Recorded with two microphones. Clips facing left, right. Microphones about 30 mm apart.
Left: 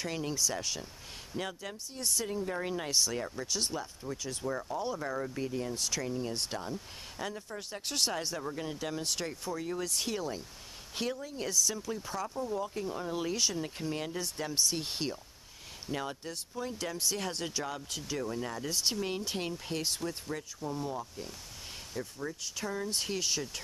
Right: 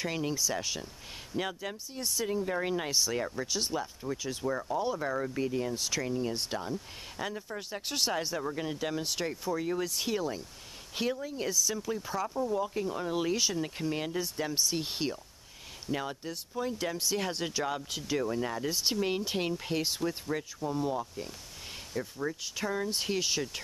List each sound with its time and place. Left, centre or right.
0.0 s speech: centre